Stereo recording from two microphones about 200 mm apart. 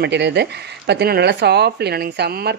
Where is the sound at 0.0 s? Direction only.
55° right (ahead or behind).